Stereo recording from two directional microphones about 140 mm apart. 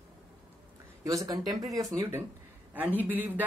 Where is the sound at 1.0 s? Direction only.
25° right (ahead or behind).